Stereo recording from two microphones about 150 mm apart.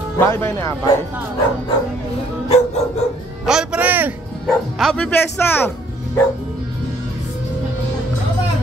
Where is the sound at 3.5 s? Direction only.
5° right (ahead or behind).